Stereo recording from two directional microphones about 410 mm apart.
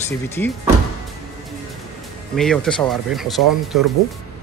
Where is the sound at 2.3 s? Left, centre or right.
Centre.